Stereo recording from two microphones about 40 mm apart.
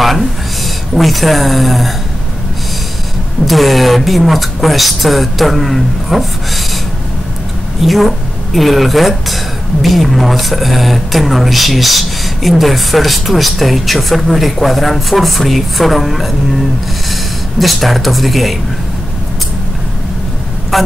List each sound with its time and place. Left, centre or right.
0.9 s speech: centre
3.4 s speech: centre
7.8 s speech: centre
20.7 s vehicle: centre